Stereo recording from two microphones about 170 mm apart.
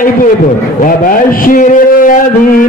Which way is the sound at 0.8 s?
55° left (ahead or behind).